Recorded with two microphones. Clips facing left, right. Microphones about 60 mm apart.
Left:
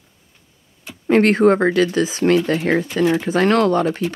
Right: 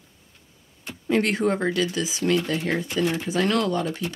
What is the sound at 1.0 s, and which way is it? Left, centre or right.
Speech, left.